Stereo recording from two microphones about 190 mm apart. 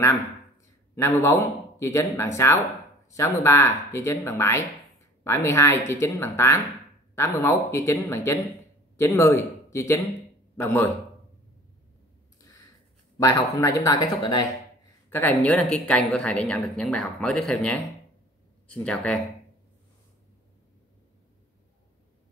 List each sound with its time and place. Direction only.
0.9 s a man's voice: 15° left (ahead or behind)
13.2 s speech: 15° left (ahead or behind)
15.0 s a woman's voice: 10° left (ahead or behind)